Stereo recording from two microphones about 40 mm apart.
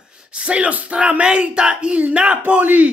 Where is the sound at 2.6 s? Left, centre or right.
Right.